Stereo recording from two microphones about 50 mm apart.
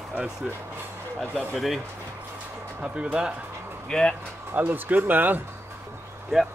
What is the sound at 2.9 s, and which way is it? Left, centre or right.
Speech, right.